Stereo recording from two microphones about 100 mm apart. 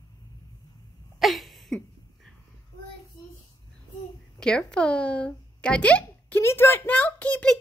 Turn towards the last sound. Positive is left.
turn(degrees=10)  # may be behind; listen again after turning